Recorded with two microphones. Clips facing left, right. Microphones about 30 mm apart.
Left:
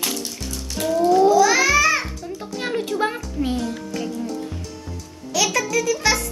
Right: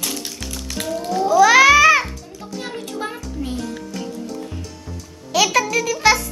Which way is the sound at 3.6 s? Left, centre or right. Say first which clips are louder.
Left 2 dB; centre.